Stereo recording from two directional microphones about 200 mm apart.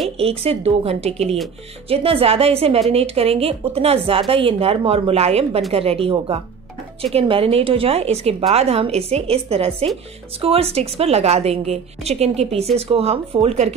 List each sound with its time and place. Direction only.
0.2 s a woman's voice: 30° right (ahead or behind)